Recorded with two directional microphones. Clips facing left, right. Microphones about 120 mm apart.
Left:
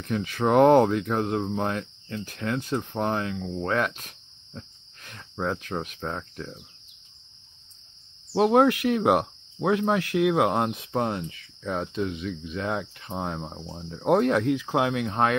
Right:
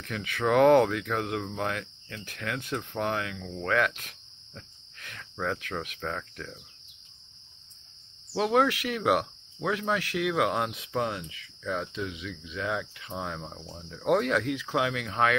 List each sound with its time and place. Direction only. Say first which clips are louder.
0.0 s speech: left 4 dB; 35° left (ahead or behind)
4.6 s cricket: left 5 dB; 30° left (ahead or behind)
8.3 s cricket: left 5 dB; 35° left (ahead or behind)
8.8 s speech: left 5 dB; 35° left (ahead or behind)
13.1 s speech: left 4 dB; 30° left (ahead or behind)